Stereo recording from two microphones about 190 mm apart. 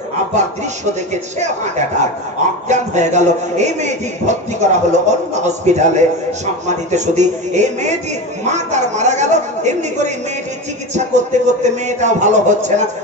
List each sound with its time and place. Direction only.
1.1 s a man's voice: 40° right (ahead or behind)
2.7 s a man's voice: 40° right (ahead or behind)